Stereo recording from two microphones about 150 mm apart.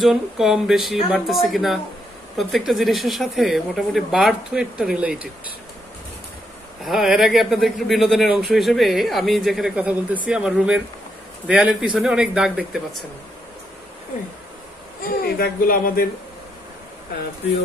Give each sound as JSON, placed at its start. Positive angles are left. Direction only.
{"t": 0.0, "sound": "speech", "side_deg": 0}
{"t": 6.8, "sound": "speech", "side_deg": 0}
{"t": 15.2, "sound": "speech", "side_deg": 90}